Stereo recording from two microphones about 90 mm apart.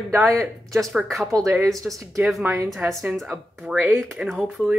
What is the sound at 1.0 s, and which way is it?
Speech, centre (ahead or behind).